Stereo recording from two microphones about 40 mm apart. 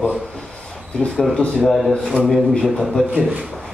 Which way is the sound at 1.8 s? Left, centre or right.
Centre.